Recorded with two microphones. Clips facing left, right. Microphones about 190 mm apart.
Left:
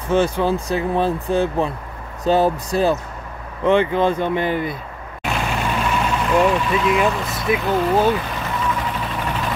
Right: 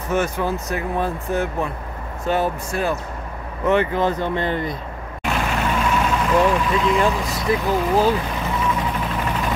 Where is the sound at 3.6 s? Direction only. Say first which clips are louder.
Left 2 dB; 25° left (ahead or behind).